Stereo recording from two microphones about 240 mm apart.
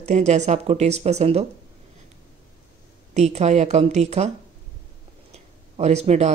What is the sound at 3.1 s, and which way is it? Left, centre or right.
Speech, right.